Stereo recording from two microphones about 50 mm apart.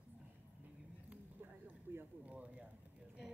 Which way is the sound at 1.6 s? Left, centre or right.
Right.